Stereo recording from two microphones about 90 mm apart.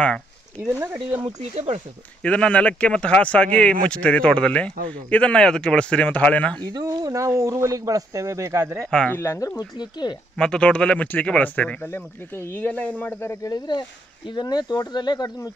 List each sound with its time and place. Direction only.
0.6 s speech: 25° right (ahead or behind)
2.2 s a man's voice: 15° left (ahead or behind)
6.7 s speech: 45° right (ahead or behind)
9.1 s speech: 25° left (ahead or behind)
9.6 s speech: 55° left (ahead or behind)
10.3 s a man's voice: 10° left (ahead or behind)
13.2 s speech: 30° left (ahead or behind)
13.5 s speech: 55° left (ahead or behind)